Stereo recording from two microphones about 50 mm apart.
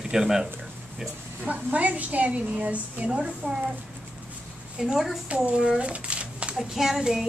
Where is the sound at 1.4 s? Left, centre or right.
Right.